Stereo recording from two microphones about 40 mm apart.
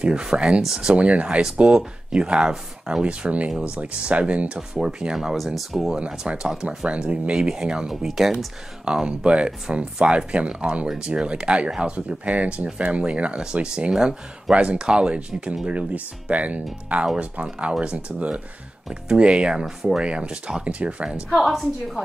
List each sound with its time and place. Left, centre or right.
0.0 s speech: right
0.9 s speech: right
5.1 s a woman's voice: centre
5.9 s speech: right
6.3 s speech: centre; by 13.4 s right
13.4 s speech: centre
15.9 s speech: right
16.9 s speech: right
19.6 s speech: centre
20.0 s speech: right
21.3 s a woman's voice: centre